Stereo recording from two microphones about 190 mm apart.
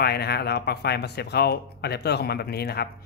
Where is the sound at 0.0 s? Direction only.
55° left (ahead or behind).